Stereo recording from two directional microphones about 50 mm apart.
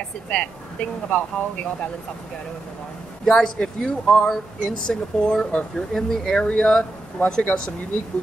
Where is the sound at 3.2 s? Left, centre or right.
Centre.